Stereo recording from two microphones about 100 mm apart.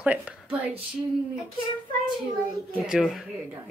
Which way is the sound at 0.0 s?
15° right (ahead or behind).